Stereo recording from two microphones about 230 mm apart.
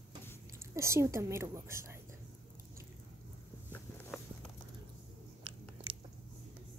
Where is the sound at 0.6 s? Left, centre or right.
Centre.